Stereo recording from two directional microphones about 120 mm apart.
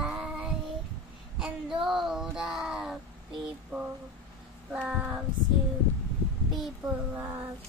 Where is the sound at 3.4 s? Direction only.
10° right (ahead or behind).